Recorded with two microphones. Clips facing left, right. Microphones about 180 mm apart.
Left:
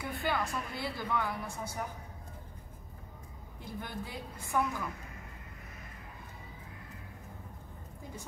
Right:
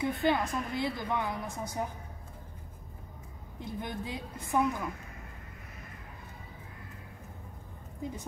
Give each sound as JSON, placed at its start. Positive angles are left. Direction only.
{"t": 0.0, "sound": "a woman's voice", "side_deg": -20}
{"t": 3.5, "sound": "a woman's voice", "side_deg": -20}